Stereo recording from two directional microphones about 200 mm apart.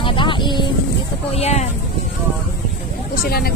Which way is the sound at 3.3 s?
50° left (ahead or behind).